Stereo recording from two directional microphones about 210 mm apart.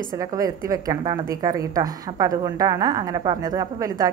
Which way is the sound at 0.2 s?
15° right (ahead or behind).